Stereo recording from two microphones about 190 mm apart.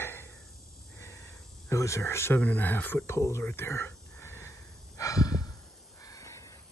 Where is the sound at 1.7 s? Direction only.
15° left (ahead or behind).